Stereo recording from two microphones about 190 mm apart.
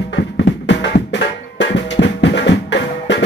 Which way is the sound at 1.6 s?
65° left (ahead or behind).